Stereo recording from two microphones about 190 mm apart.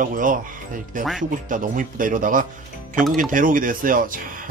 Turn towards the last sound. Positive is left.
turn(degrees=-45)  # may be behind; listen again after turning